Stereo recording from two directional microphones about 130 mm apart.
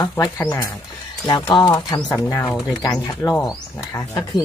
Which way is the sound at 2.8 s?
30° left (ahead or behind).